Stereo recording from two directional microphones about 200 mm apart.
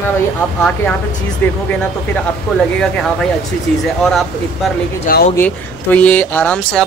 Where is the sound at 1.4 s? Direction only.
10° left (ahead or behind).